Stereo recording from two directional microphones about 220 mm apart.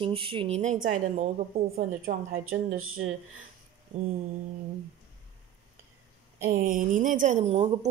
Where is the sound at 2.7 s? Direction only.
70° right (ahead or behind).